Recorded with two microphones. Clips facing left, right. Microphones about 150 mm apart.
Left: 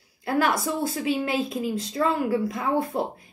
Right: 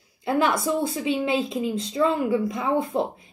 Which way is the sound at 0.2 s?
Centre (ahead or behind).